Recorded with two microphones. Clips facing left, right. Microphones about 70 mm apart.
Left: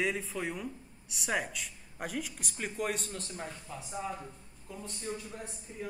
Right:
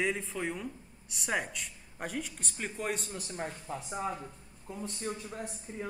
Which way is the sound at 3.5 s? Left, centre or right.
Right.